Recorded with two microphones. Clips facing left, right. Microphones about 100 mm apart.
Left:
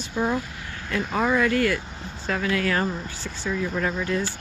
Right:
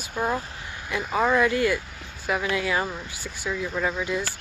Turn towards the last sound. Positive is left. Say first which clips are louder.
# left 1 dB
turn(degrees=-10)  # may be behind; listen again after turning